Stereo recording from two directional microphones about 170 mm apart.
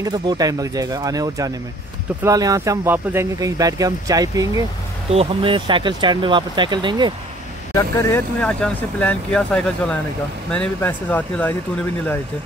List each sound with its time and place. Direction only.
0.0 s speech: 25° right (ahead or behind)
5.1 s speech: 35° right (ahead or behind)
7.7 s speech: 20° left (ahead or behind)
8.4 s speech: 5° left (ahead or behind)